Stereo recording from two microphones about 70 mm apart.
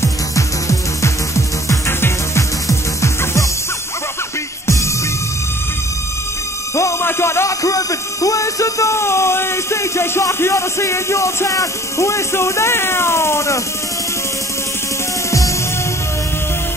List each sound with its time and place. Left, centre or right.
0.0 s music: left
6.7 s speech: left